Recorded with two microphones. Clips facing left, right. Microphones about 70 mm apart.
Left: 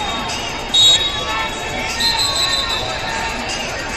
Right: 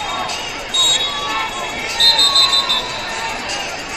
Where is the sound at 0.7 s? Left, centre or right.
Left.